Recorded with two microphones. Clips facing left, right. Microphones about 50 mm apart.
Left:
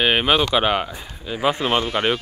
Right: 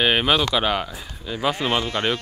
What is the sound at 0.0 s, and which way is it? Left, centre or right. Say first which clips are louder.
Speech: left 1 dB; centre.